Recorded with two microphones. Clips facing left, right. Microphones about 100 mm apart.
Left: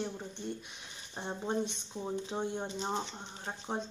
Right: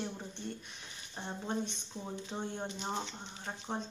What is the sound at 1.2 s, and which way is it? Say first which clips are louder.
Speech: left 3 dB; 25° left (ahead or behind).